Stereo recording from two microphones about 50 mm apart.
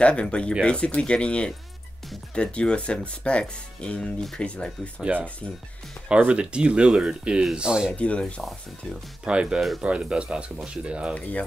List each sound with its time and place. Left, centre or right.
0.0 s speech: left
5.1 s speech: right; by 7.9 s centre
7.9 s speech: left
9.2 s speech: centre
11.1 s speech: left